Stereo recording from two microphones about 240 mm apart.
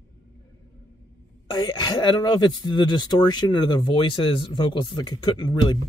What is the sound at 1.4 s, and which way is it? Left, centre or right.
Speech, centre.